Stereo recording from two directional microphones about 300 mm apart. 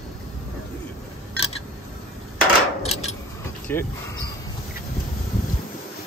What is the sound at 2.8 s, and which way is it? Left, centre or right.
Keys jangling, left.